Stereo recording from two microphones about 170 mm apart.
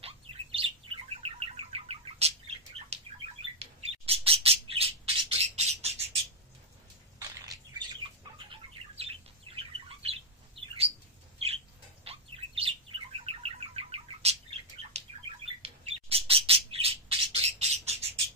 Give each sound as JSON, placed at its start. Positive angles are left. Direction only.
{"t": 0.0, "sound": "bird", "side_deg": -35}
{"t": 7.2, "sound": "bird", "side_deg": -20}